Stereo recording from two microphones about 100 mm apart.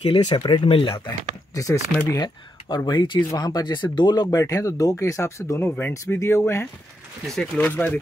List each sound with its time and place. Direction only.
0.2 s speech: 45° left (ahead or behind)
1.5 s speech: 35° left (ahead or behind)
7.3 s speech: 15° left (ahead or behind)